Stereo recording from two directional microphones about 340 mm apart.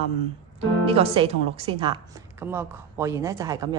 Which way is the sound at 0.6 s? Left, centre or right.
Centre.